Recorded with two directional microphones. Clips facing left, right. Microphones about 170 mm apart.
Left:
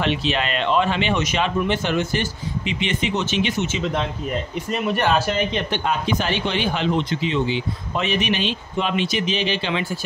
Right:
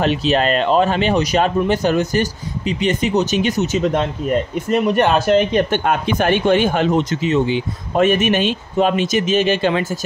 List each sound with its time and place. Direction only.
0.0 s a man's voice: 40° right (ahead or behind)